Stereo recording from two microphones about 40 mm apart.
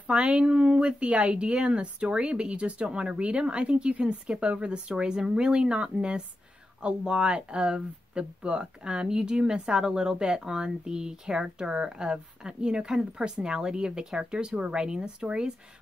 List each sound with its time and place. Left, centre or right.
0.0 s speech: right